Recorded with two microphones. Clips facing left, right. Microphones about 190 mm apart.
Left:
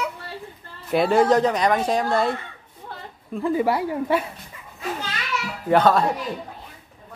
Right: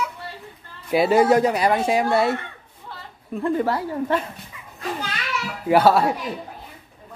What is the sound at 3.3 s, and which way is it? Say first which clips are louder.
A woman's voice: left 1 dB; 5° left (ahead or behind).